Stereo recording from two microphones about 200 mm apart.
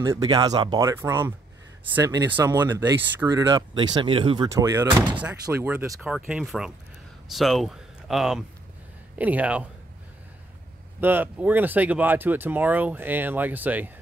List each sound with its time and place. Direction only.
0.0 s speech: 15° right (ahead or behind)
5.1 s speech: 5° right (ahead or behind)
11.0 s speech: 10° right (ahead or behind)